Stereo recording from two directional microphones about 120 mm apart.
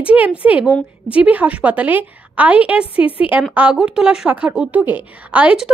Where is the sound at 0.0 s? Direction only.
10° right (ahead or behind).